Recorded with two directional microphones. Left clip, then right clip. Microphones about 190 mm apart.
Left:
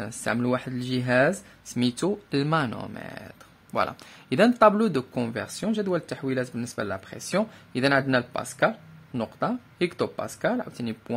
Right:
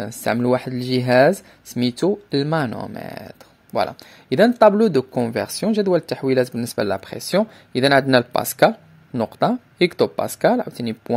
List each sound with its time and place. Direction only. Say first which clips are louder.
0.0 s speech: right 7 dB; 25° right (ahead or behind)